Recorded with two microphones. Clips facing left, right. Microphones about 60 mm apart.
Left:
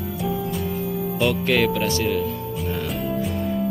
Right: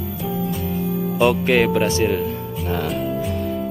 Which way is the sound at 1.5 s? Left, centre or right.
Right.